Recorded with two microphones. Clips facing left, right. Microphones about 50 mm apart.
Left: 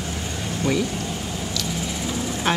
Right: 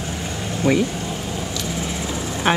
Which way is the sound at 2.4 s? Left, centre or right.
Right.